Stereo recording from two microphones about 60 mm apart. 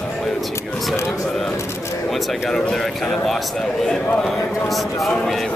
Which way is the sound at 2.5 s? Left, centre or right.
Centre.